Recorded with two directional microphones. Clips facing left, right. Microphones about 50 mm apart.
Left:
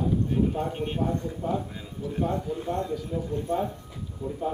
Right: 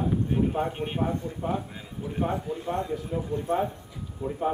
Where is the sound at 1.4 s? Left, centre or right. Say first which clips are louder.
Even; right.